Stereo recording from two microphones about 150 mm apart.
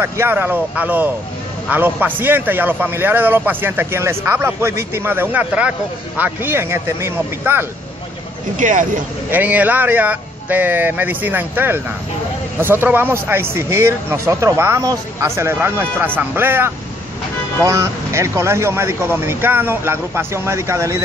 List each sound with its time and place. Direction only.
0.0 s speech: 15° right (ahead or behind)
8.5 s speech: 60° right (ahead or behind)
9.3 s speech: 10° right (ahead or behind)